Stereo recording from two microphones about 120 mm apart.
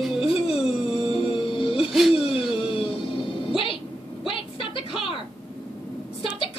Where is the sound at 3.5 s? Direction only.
50° left (ahead or behind).